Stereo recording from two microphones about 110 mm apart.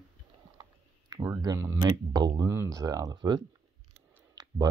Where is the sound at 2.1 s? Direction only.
40° right (ahead or behind).